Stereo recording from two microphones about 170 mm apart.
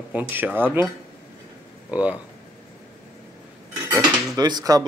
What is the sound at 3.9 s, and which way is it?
Dishes, 20° right (ahead or behind).